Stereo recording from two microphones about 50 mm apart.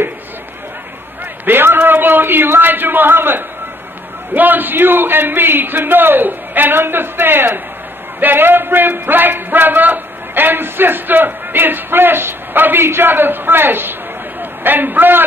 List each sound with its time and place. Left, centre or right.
1.4 s a man's voice: right
4.3 s a sound: right
14.4 s a man's voice: right